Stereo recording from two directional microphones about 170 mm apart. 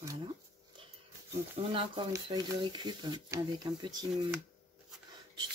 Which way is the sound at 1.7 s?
25° right (ahead or behind).